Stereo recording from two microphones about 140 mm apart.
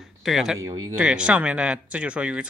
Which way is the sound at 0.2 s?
Centre (ahead or behind).